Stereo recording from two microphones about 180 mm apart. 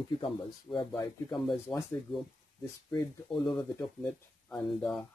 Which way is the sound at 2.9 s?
Centre (ahead or behind).